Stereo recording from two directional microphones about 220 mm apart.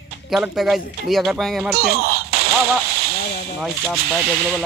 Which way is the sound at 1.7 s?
45° right (ahead or behind).